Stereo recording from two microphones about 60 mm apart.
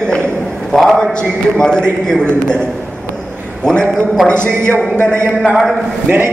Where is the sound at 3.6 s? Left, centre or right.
Centre.